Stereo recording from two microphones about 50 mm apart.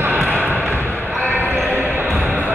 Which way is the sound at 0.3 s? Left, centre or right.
Right.